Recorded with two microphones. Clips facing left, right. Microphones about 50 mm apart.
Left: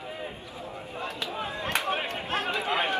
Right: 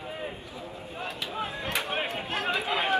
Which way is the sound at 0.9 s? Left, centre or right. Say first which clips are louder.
Left 1 dB; left.